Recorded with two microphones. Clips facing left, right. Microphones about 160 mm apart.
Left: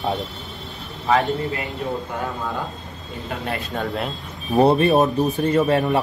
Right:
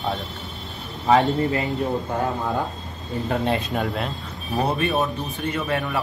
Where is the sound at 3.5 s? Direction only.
20° right (ahead or behind).